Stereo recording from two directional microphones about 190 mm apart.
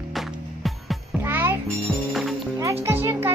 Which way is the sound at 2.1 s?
Centre (ahead or behind).